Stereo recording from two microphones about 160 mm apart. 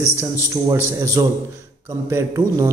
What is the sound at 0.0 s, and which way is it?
A man's voice, 15° right (ahead or behind).